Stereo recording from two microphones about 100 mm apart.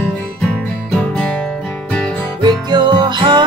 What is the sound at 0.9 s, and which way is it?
Music, 10° left (ahead or behind).